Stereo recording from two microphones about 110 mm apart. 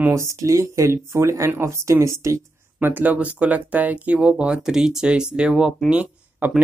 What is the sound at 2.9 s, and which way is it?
Speech, 15° right (ahead or behind).